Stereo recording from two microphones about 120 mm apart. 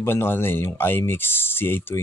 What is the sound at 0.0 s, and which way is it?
Speech, 20° left (ahead or behind).